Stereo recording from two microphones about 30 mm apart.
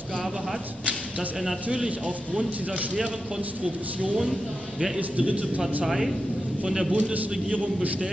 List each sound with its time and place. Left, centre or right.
1.7 s speech: right
5.1 s a man's voice: right
5.9 s speech: centre
6.9 s a man's voice: right